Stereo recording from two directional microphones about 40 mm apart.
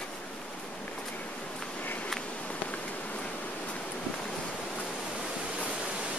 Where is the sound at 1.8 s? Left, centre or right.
Left.